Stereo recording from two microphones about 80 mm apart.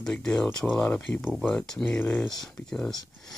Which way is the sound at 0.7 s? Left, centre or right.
Centre.